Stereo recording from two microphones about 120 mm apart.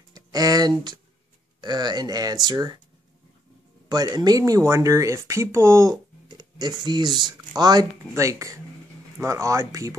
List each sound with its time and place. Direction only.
0.1 s a sound: 30° right (ahead or behind)
1.6 s speech: 35° right (ahead or behind)
3.9 s speech: 30° right (ahead or behind)
8.0 s speech: 25° right (ahead or behind)